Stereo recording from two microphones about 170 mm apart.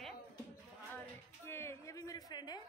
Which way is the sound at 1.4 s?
15° left (ahead or behind).